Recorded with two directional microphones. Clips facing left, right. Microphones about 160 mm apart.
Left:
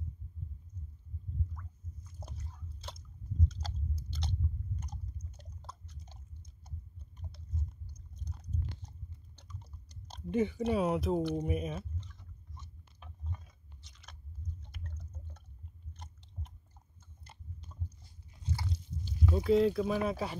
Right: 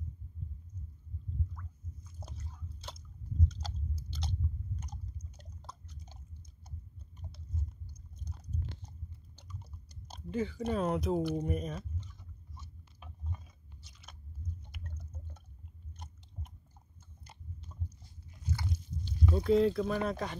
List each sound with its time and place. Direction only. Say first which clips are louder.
2.1 s drip: left 1 dB; centre (ahead or behind)
4.1 s biting: even; centre (ahead or behind)
5.4 s drip: right 1 dB; centre (ahead or behind)
7.2 s chewing: even; centre (ahead or behind)
9.4 s chewing: right 3 dB; 5° right (ahead or behind)
10.3 s speech: left 4 dB; 20° left (ahead or behind)
10.7 s speech: right 2 dB; 5° left (ahead or behind)
12.0 s chewing: right 1 dB; 5° right (ahead or behind)
14.7 s a sound: even; 10° right (ahead or behind)
18.4 s a sound: right 1 dB; 30° left (ahead or behind)
19.3 s speech: even; centre (ahead or behind)